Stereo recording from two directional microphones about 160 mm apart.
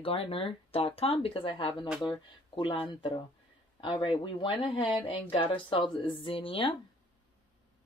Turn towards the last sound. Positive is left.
turn(degrees=35)  # may be behind; listen again after turning